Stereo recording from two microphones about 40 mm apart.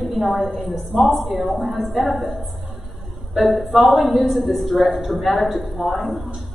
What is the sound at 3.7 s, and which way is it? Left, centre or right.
A woman's voice, centre.